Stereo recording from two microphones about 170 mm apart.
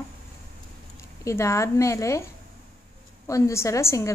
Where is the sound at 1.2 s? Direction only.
15° left (ahead or behind).